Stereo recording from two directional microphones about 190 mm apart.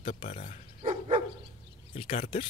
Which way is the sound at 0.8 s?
30° right (ahead or behind).